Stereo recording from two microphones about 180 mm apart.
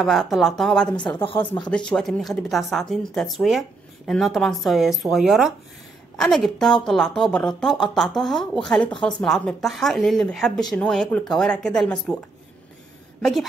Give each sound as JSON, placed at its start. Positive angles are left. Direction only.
{"t": 0.0, "sound": "a woman's voice", "side_deg": 0}
{"t": 1.2, "sound": "speech", "side_deg": 30}
{"t": 1.9, "sound": "a woman's voice", "side_deg": 0}
{"t": 13.2, "sound": "a woman's voice", "side_deg": 0}